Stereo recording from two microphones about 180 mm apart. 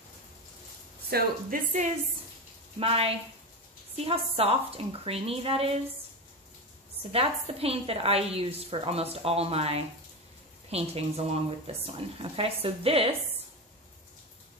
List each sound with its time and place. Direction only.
1.1 s a woman's voice: 45° right (ahead or behind)
2.8 s a woman's voice: 30° right (ahead or behind)
7.0 s a woman's voice: 35° right (ahead or behind)